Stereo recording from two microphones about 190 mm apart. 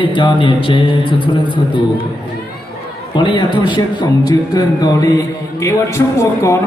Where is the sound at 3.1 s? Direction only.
25° left (ahead or behind).